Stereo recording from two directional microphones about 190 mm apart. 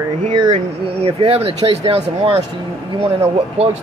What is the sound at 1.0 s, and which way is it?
Speech, 30° right (ahead or behind).